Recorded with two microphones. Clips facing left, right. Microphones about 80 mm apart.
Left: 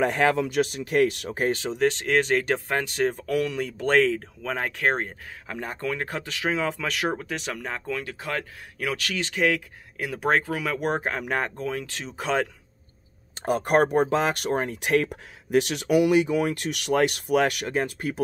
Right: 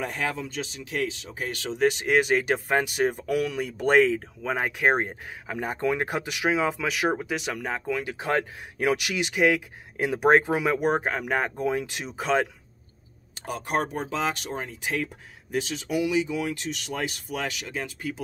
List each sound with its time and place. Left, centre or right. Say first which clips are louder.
0.0 s speech: left 8 dB; left
1.9 s speech: right 1 dB; centre
10.8 s speech: right 2 dB; centre
12.2 s speech: right 1 dB; centre
13.5 s speech: left 7 dB; left